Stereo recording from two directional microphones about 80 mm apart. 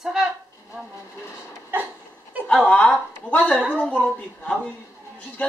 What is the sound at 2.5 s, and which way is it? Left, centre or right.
A woman's voice, centre.